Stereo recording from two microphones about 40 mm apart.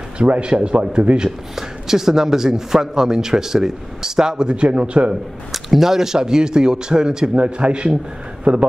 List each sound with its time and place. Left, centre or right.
0.2 s speech: right
1.5 s a man's voice: centre
4.6 s speech: right
5.5 s a man's voice: centre; by 8.6 s right